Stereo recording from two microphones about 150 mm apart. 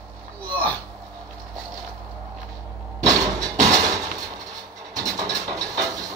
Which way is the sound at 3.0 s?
25° right (ahead or behind).